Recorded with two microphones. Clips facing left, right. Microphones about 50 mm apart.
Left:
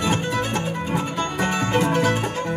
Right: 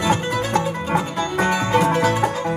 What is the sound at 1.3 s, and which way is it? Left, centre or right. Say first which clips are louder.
Music: right 5 dB; right.